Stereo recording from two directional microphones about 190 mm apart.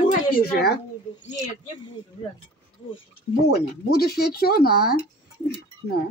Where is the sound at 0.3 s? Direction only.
55° left (ahead or behind).